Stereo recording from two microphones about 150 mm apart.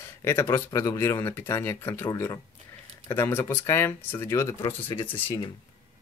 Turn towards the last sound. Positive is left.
turn(degrees=10)  # may be behind; listen again after turning